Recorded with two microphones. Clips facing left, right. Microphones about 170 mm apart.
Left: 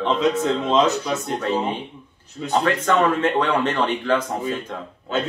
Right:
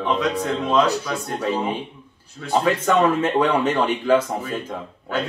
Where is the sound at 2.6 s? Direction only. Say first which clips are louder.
Right 1 dB; 10° right (ahead or behind).